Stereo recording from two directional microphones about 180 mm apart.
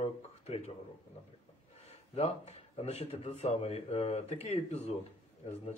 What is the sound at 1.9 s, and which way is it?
Speech, 35° left (ahead or behind).